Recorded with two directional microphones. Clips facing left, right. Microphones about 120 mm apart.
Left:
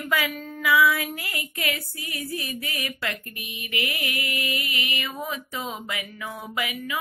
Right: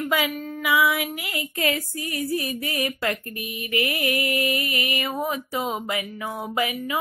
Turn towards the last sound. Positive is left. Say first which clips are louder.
# right 5 dB
turn(degrees=-30)  # may be behind; listen again after turning